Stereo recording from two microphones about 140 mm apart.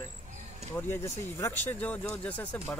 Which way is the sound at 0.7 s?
15° left (ahead or behind).